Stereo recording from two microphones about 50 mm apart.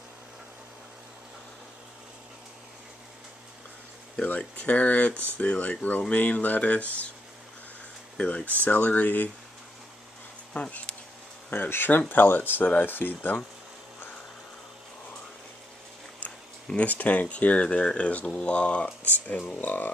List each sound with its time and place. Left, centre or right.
4.4 s speech: left
5.1 s speech: right
5.4 s speech: left
8.2 s speech: left
8.6 s speech: left
10.5 s bee: left
11.5 s speech: left
16.8 s speech: left